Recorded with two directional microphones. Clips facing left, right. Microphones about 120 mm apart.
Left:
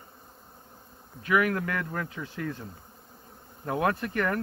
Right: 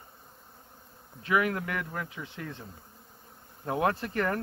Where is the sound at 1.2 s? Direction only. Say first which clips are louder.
Left 2 dB; 25° right (ahead or behind).